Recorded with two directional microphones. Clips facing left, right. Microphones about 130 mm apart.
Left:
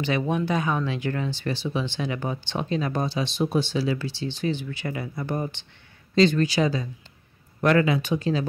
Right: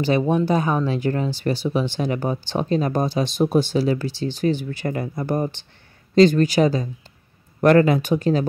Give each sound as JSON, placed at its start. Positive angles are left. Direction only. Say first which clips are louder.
{"t": 0.0, "sound": "speech", "louder": "right 6 dB", "side_deg": -35}